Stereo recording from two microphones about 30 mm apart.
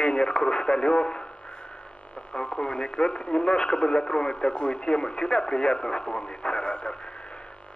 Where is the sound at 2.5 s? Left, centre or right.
Left.